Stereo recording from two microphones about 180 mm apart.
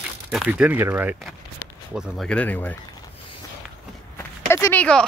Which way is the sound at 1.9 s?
Centre (ahead or behind).